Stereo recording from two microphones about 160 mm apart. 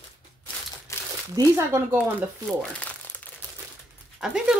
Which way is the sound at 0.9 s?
20° left (ahead or behind).